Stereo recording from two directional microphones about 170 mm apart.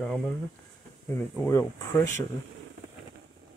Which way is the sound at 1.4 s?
20° left (ahead or behind).